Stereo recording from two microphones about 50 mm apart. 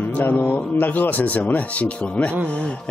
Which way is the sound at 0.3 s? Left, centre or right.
Left.